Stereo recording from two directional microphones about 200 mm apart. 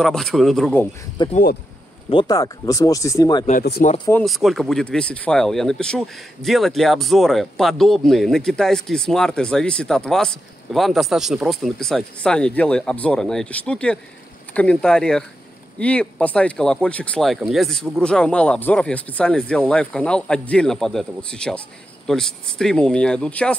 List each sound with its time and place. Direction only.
0.0 s speech: centre (ahead or behind)
1.2 s speech: 25° left (ahead or behind)
4.1 s speech: centre (ahead or behind)